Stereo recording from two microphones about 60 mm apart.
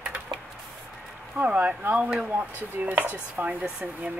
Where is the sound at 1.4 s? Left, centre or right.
Right.